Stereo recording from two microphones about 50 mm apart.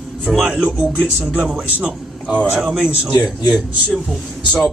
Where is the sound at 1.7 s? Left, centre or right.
Right.